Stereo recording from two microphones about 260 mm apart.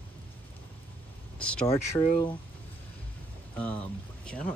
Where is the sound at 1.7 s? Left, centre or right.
Centre.